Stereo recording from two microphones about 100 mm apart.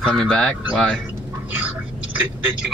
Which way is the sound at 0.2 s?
10° left (ahead or behind).